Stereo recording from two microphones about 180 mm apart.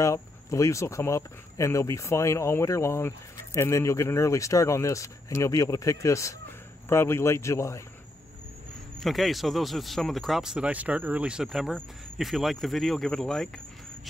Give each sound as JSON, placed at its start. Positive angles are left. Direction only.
{"t": 0.0, "sound": "speech", "side_deg": 15}
{"t": 9.0, "sound": "speech", "side_deg": 0}